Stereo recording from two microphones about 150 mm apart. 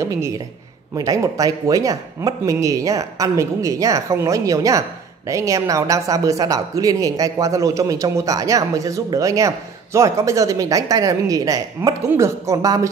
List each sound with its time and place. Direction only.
0.0 s speech: 20° right (ahead or behind)